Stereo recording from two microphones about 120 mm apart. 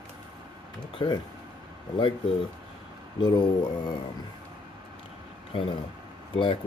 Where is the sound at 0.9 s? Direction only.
35° left (ahead or behind).